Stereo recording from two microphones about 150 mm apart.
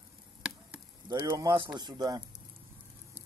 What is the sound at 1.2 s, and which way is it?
Speech, 25° right (ahead or behind).